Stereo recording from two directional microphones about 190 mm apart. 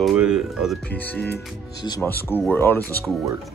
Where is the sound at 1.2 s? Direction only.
60° left (ahead or behind).